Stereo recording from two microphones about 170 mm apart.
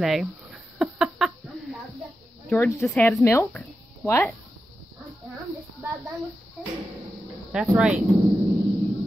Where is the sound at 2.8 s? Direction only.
Centre (ahead or behind).